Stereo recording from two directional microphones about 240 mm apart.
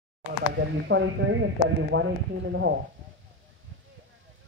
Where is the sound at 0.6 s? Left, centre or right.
Right.